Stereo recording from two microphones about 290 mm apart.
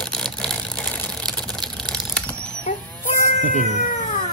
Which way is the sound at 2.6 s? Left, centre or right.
Left.